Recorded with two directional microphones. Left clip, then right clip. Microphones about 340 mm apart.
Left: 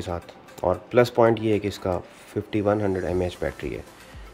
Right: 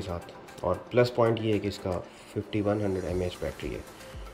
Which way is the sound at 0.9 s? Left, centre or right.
Centre.